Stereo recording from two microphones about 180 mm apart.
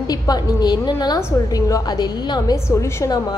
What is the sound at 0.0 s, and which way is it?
A woman's voice, 20° left (ahead or behind).